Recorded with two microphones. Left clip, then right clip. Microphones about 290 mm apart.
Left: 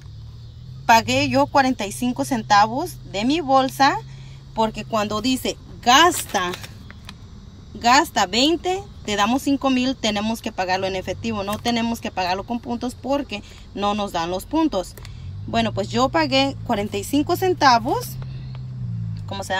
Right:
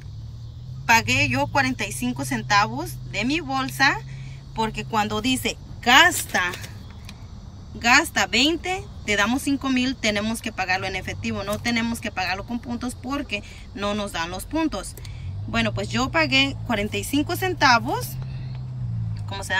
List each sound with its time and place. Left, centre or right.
0.8 s speech: centre
5.1 s speech: left
6.0 s speech: centre
7.8 s speech: centre